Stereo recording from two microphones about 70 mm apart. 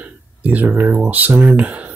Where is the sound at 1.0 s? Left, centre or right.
Right.